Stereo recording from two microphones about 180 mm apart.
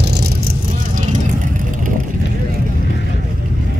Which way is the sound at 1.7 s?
50° right (ahead or behind).